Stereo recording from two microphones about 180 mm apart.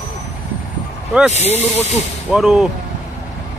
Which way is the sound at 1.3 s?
35° left (ahead or behind).